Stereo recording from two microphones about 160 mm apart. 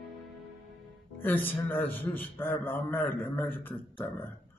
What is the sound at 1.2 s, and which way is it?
A man's voice, 10° left (ahead or behind).